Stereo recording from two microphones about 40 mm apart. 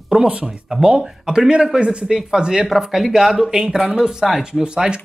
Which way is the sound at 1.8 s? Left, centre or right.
Right.